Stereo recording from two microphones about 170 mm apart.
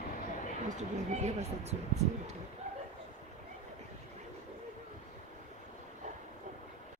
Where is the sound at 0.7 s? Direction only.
45° right (ahead or behind).